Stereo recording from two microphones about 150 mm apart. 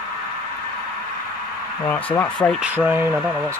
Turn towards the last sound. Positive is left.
turn(degrees=-10)  # may be behind; listen again after turning